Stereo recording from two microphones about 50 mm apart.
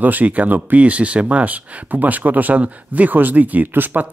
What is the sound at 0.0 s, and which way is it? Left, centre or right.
Speech, right.